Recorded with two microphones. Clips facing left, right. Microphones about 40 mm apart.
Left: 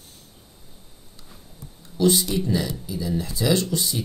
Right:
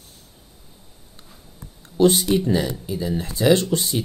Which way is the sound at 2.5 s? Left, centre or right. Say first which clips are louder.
Right 3 dB; right.